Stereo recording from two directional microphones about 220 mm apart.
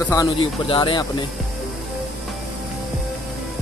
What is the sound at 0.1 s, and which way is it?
Speech, 20° left (ahead or behind).